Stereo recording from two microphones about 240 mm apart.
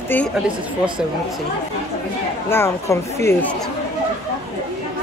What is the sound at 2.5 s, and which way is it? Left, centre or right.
Speech, centre.